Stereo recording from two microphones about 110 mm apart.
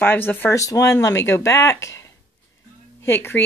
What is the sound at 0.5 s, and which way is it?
Speech, 30° left (ahead or behind).